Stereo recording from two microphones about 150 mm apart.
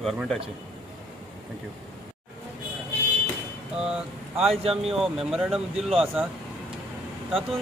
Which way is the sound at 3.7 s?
5° right (ahead or behind).